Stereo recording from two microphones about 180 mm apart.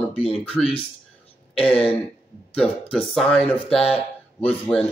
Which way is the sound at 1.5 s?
5° left (ahead or behind).